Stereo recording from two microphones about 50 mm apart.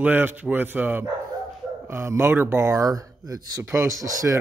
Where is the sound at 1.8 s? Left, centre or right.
Right.